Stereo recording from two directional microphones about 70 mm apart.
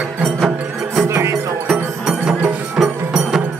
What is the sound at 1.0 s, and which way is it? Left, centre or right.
Music, right.